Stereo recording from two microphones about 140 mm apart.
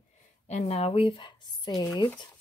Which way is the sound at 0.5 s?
50° left (ahead or behind).